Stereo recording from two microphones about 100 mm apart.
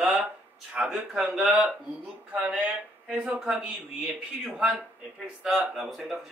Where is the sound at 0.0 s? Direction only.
10° right (ahead or behind).